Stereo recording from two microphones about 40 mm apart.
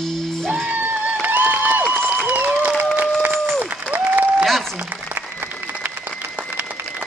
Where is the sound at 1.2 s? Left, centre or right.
Right.